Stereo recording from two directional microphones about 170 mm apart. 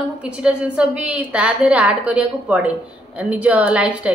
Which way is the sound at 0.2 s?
5° right (ahead or behind).